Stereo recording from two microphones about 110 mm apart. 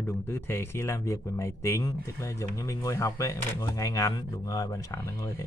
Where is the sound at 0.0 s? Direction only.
20° left (ahead or behind).